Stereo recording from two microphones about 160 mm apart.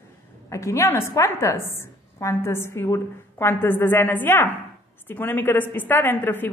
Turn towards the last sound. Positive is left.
turn(degrees=10)  # may be behind; listen again after turning